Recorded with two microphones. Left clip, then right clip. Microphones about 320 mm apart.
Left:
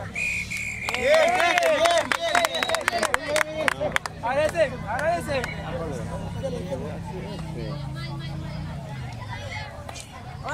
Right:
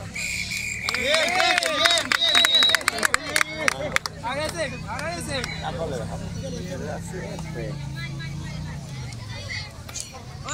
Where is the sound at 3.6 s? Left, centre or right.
Left.